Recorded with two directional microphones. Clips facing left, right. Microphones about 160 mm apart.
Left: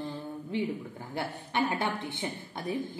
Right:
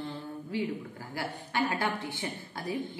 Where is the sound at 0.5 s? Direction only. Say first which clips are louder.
Left 1 dB; 20° left (ahead or behind).